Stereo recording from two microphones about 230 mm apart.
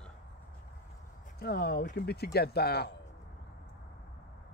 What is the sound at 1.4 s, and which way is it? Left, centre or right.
Speech, left.